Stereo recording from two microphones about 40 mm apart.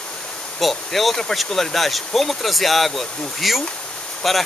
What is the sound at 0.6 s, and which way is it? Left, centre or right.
Speech, centre.